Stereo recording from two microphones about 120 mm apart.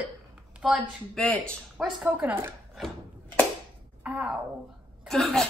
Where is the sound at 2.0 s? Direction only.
15° right (ahead or behind).